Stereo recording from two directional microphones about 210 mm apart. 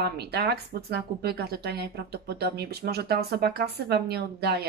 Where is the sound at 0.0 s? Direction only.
50° right (ahead or behind).